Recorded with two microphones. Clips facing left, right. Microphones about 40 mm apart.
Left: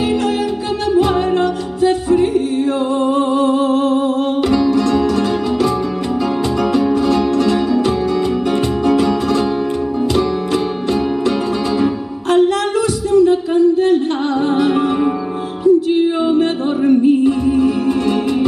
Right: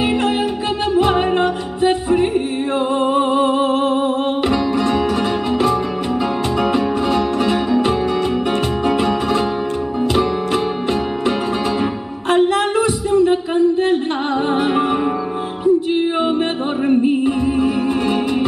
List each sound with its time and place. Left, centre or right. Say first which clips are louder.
0.9 s music: left 1 dB; right
13.1 s a sound: left 4 dB; right
14.5 s music: left 1 dB; right